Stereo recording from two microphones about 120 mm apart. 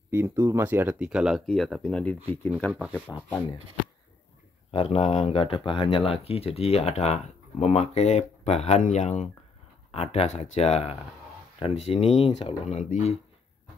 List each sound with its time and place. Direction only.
0.1 s speech: 25° right (ahead or behind); by 1.4 s 5° right (ahead or behind)
1.4 s speech: 5° left (ahead or behind)
2.7 s speech: 10° right (ahead or behind)
3.1 s speech: 15° left (ahead or behind)
4.6 s speech: 55° left (ahead or behind); by 9.3 s 75° left (ahead or behind)
9.8 s speech: 65° left (ahead or behind)